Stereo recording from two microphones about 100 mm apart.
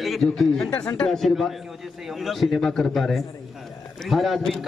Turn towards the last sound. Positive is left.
turn(degrees=0)  # may be behind; listen again after turning